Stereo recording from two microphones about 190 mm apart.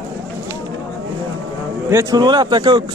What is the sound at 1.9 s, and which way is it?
Speech, 20° right (ahead or behind).